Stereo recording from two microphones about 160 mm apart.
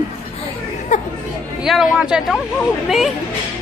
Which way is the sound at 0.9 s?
50° left (ahead or behind).